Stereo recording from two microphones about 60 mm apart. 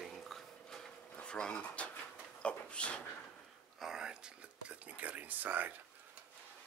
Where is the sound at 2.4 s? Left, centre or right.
Centre.